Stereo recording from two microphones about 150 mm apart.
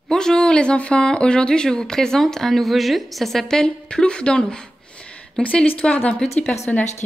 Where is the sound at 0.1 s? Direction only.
5° left (ahead or behind).